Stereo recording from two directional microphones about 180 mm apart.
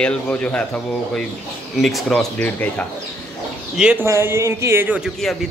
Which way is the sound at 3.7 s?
5° right (ahead or behind).